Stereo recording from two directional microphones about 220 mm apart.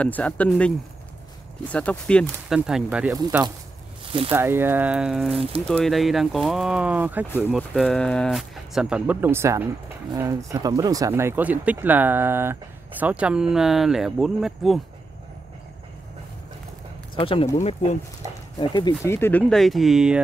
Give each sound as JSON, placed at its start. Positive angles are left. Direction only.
{"t": 0.0, "sound": "speech", "side_deg": 5}
{"t": 3.2, "sound": "speech", "side_deg": -15}
{"t": 4.0, "sound": "snake", "side_deg": -25}
{"t": 4.3, "sound": "speech", "side_deg": -10}
{"t": 17.1, "sound": "speech", "side_deg": 25}